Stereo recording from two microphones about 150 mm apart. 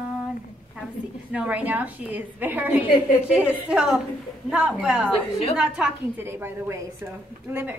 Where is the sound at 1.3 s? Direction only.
10° right (ahead or behind).